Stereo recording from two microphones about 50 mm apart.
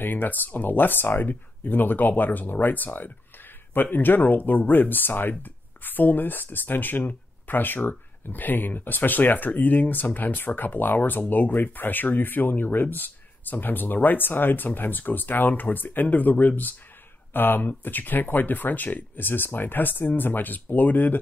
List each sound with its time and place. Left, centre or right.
0.0 s speech: left